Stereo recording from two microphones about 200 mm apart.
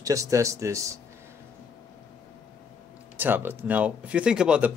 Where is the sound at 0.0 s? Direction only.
15° right (ahead or behind).